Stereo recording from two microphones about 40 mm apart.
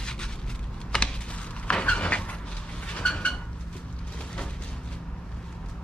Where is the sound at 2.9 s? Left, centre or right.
Left.